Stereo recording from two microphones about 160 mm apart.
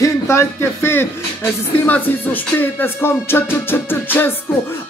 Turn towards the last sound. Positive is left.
turn(degrees=10)  # may be behind; listen again after turning